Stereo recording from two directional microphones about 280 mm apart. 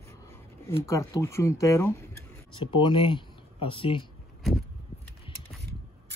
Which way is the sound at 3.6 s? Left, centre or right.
Centre.